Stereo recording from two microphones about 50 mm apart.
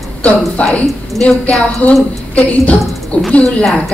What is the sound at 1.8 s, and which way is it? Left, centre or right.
A woman's voice, left.